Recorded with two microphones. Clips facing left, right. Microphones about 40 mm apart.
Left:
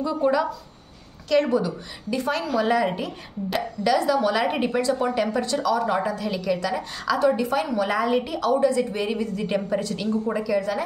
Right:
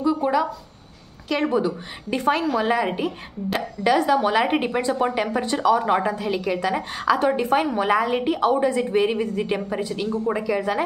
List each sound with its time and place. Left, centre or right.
0.0 s speech: centre
2.0 s speech: right
6.1 s speech: right
7.9 s speech: centre
9.5 s speech: centre